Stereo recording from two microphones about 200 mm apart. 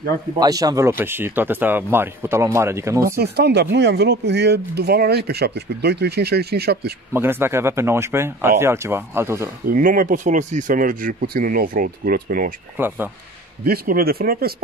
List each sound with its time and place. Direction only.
0.4 s speech: 20° right (ahead or behind)
3.2 s speech: 55° right (ahead or behind)
7.2 s speech: 10° right (ahead or behind)
9.7 s speech: 45° right (ahead or behind)
12.7 s speech: 10° right (ahead or behind)
13.7 s speech: 50° right (ahead or behind)